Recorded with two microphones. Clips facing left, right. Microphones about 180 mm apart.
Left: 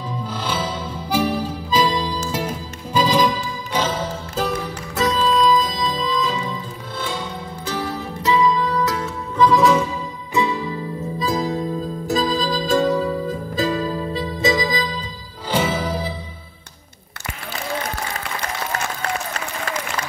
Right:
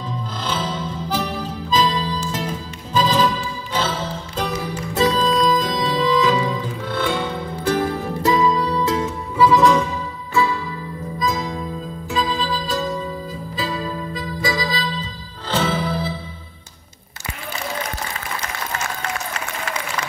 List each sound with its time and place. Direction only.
0.1 s harmonica: 10° left (ahead or behind)
2.3 s music: 10° left (ahead or behind)
4.9 s music: 35° right (ahead or behind); by 6.3 s 75° right (ahead or behind)
6.9 s music: 60° right (ahead or behind); by 9.1 s 25° right (ahead or behind)
9.4 s music: centre (ahead or behind)
10.3 s music: 20° left (ahead or behind); by 12.8 s 45° left (ahead or behind)
12.8 s music: 70° left (ahead or behind)
13.6 s music: 45° left (ahead or behind)
14.1 s music: 20° left (ahead or behind)